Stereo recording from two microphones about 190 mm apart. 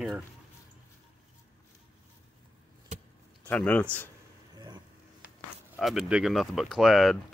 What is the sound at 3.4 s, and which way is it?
Speech, 10° left (ahead or behind).